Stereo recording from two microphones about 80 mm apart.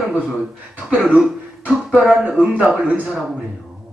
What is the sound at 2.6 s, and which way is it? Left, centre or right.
Speech, centre.